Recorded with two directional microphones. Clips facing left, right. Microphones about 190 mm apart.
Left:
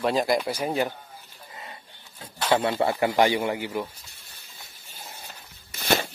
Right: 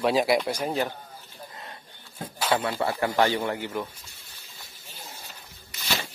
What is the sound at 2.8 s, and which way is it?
Speech, 15° left (ahead or behind).